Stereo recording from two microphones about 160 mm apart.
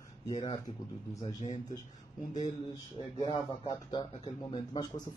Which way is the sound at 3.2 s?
25° left (ahead or behind).